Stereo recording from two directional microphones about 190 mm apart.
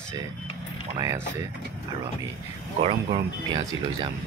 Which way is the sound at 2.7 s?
25° right (ahead or behind).